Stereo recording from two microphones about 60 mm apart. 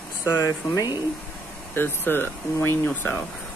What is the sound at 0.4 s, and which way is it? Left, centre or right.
Speech, left.